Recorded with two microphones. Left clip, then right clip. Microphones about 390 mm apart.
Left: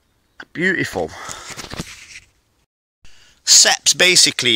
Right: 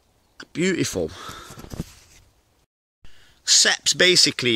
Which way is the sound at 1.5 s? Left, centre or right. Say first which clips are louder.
Left 8 dB; left.